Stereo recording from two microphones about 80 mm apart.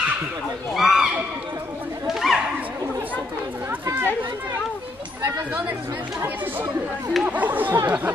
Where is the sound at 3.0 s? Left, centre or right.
Right.